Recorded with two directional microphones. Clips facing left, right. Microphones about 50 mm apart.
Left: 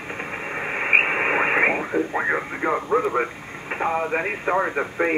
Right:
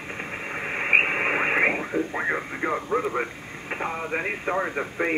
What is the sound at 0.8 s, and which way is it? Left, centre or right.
Radio, centre.